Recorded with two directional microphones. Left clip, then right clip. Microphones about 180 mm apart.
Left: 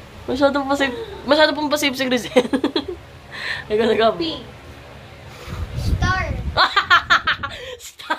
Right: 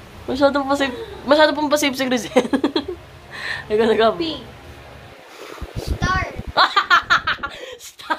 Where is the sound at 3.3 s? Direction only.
5° right (ahead or behind).